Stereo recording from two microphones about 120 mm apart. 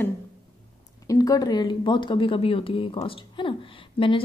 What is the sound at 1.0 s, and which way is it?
Speech, 30° left (ahead or behind).